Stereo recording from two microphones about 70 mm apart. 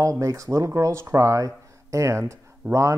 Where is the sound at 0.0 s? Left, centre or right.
Right.